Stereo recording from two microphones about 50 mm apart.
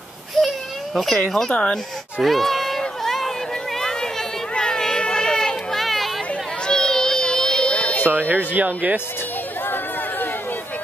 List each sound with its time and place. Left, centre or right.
0.9 s speech: centre
1.5 s speech: centre
2.2 s speech: centre
3.0 s a sound: centre
4.6 s children playing: centre
6.6 s music: centre
8.1 s speech: right
9.7 s chatter: left